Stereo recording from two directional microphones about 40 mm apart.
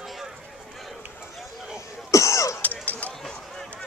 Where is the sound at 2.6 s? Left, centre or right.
Left.